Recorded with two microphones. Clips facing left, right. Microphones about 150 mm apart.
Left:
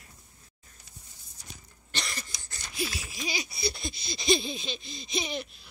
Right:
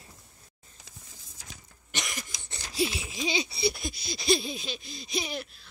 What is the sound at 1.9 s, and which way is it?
Cough, 15° right (ahead or behind).